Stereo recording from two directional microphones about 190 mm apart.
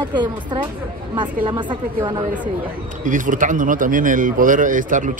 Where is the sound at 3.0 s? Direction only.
45° right (ahead or behind).